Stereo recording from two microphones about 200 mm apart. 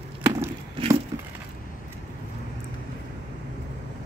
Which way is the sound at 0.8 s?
25° right (ahead or behind).